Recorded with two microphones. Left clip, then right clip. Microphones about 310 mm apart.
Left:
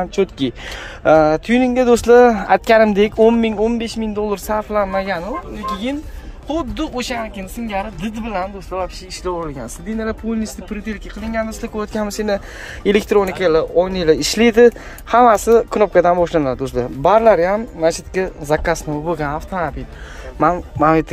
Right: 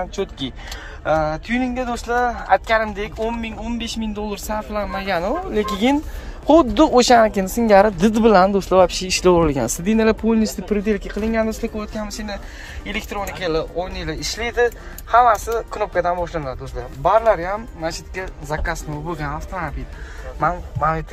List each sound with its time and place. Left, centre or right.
0.0 s speech: left; by 5.3 s centre
5.5 s speech: centre
11.7 s speech: centre
14.2 s speech: left